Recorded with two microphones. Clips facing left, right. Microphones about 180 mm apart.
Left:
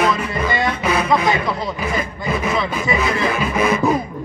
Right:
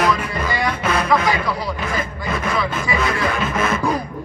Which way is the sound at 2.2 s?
5° left (ahead or behind).